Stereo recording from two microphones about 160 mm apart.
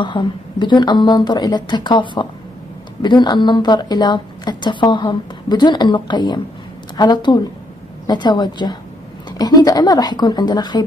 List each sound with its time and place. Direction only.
0.0 s a woman's voice: 30° left (ahead or behind)